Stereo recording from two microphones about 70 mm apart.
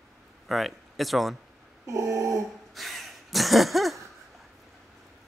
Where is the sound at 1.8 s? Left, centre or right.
Right.